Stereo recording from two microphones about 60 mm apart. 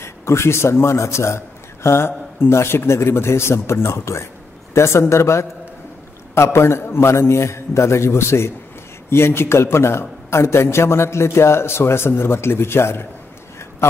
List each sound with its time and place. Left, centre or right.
0.0 s a man's voice: left